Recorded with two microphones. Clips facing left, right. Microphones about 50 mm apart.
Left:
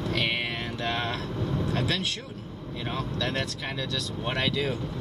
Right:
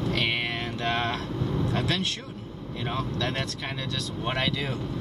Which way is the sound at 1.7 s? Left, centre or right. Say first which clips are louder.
Even; centre.